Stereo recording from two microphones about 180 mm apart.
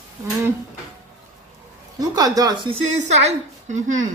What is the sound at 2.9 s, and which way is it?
A woman's voice, 40° right (ahead or behind).